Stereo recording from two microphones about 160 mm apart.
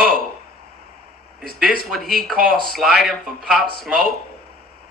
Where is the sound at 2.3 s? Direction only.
60° right (ahead or behind).